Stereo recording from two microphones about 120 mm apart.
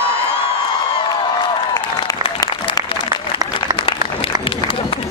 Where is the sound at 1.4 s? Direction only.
35° left (ahead or behind).